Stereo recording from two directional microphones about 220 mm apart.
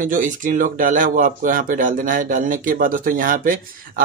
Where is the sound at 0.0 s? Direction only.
35° right (ahead or behind).